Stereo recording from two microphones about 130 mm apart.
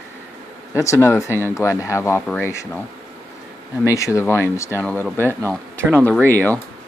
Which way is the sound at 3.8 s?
25° left (ahead or behind).